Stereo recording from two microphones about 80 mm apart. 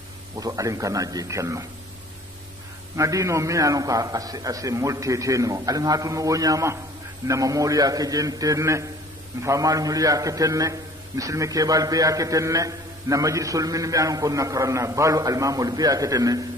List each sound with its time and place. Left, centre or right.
0.4 s a man's voice: right
3.0 s a man's voice: right